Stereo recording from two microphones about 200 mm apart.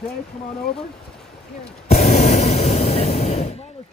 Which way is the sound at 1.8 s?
35° left (ahead or behind).